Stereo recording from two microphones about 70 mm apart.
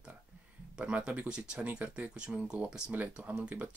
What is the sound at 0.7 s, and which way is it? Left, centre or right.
Speech, centre.